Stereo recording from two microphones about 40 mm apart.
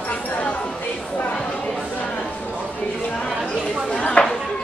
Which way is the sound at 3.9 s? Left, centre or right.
Left.